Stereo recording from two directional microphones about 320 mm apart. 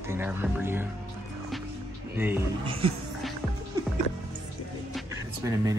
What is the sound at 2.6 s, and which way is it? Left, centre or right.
Speech, centre.